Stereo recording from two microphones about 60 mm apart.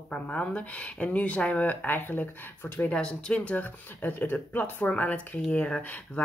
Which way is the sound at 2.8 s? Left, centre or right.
Centre.